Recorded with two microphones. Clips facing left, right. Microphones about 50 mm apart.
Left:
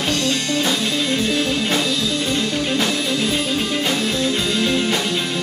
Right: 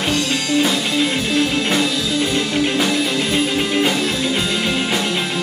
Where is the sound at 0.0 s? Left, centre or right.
Centre.